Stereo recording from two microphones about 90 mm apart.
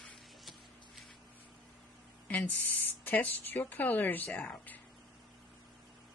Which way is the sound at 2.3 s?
20° left (ahead or behind).